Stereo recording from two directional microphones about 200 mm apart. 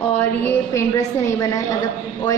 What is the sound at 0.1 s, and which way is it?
A woman's voice, 10° left (ahead or behind).